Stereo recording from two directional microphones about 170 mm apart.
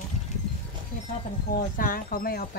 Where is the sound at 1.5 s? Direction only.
55° left (ahead or behind).